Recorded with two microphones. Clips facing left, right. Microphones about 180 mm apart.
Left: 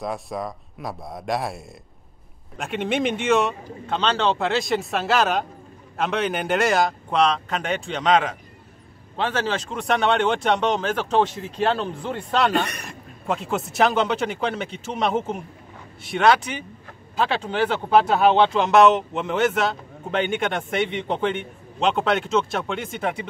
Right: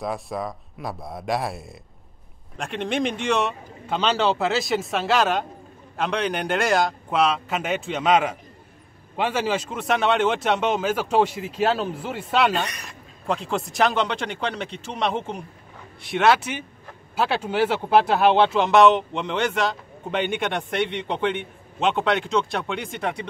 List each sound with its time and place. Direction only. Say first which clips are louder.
0.0 s speech: even; centre (ahead or behind)
12.6 s a man's voice: left 1 dB; 55° left (ahead or behind)
13.3 s speech: even; centre (ahead or behind)